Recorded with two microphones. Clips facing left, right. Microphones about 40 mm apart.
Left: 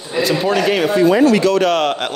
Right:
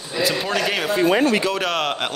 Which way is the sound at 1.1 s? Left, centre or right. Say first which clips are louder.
Left 5 dB; right.